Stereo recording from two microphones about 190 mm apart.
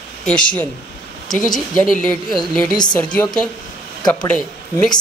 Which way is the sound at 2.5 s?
5° left (ahead or behind).